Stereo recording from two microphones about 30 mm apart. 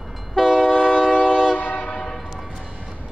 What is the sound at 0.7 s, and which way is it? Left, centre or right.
Train, left.